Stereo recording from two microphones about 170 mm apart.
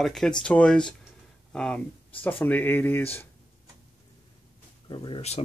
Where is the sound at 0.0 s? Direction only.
5° left (ahead or behind).